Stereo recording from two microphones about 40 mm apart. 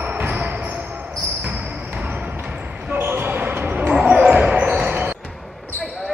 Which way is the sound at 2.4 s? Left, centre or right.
Right.